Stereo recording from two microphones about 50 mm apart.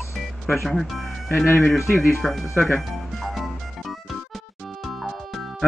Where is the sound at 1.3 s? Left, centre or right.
Left.